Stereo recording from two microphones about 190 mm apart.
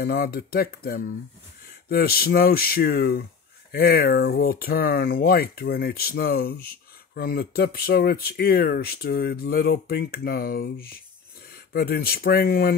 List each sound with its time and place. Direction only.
0.0 s speech: 55° left (ahead or behind)